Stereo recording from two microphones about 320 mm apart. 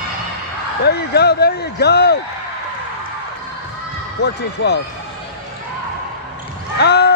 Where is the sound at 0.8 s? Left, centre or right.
Left.